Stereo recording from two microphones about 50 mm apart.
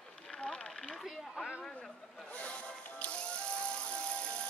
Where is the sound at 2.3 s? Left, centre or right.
Left.